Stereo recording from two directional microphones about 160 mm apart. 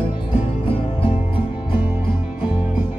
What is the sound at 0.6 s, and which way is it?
Music, 35° left (ahead or behind).